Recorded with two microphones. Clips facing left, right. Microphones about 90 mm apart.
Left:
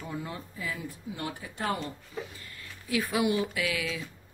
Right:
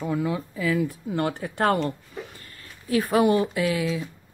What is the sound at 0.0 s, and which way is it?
Speech, 90° right.